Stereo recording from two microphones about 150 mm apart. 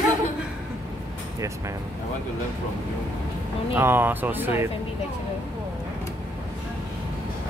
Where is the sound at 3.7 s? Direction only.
15° right (ahead or behind).